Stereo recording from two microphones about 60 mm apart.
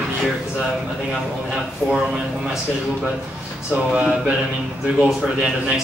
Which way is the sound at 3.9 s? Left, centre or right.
Right.